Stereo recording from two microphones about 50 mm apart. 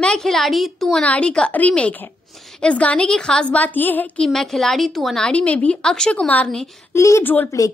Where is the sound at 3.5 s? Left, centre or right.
Left.